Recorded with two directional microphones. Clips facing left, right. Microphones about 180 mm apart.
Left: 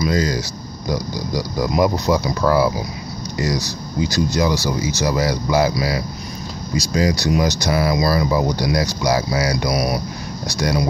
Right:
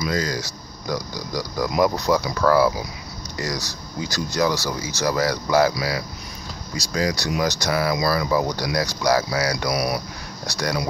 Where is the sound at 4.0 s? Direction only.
20° left (ahead or behind).